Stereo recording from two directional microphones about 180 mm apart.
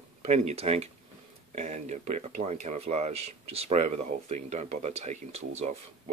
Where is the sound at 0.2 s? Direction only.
40° right (ahead or behind).